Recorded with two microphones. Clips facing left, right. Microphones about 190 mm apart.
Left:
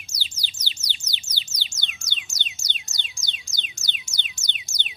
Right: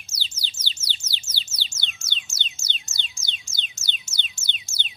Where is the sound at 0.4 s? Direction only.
15° left (ahead or behind).